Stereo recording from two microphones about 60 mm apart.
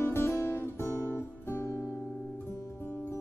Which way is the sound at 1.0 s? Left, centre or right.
Left.